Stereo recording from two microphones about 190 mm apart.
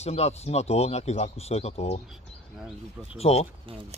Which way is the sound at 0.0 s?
35° left (ahead or behind).